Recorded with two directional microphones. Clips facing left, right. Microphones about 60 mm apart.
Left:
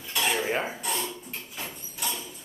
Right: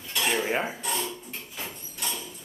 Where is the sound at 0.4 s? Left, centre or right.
Centre.